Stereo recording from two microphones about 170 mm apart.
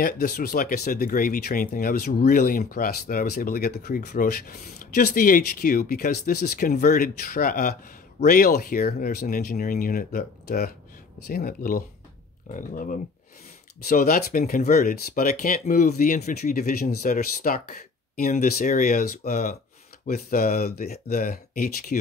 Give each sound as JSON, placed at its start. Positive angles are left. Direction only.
{"t": 0.0, "sound": "speech", "side_deg": 60}
{"t": 4.1, "sound": "speech", "side_deg": 55}
{"t": 6.7, "sound": "speech", "side_deg": 50}